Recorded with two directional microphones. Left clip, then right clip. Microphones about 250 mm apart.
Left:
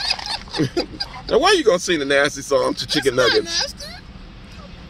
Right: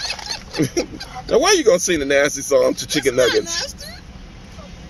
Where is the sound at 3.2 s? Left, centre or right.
Left.